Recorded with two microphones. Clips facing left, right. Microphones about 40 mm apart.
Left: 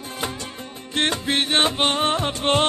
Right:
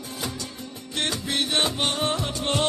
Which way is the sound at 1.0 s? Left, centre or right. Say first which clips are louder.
Left 5 dB; left.